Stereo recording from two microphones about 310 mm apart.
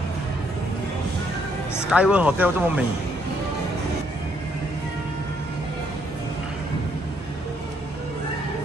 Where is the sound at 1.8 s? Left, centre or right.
Centre.